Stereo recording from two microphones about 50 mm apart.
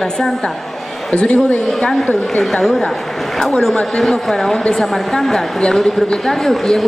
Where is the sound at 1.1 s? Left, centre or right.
Left.